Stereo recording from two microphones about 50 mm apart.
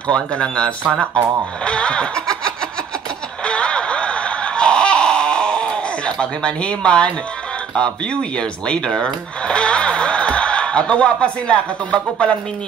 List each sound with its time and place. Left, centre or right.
0.1 s speech: left
1.6 s snicker: left
3.4 s a sound: left
7.7 s speech: centre